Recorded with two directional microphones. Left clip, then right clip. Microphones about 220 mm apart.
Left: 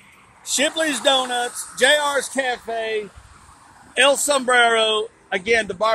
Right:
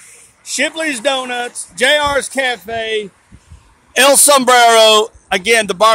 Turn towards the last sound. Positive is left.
turn(degrees=-50)  # may be behind; listen again after turning